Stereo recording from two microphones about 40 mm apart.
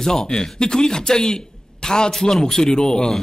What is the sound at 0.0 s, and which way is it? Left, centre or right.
Speech, centre.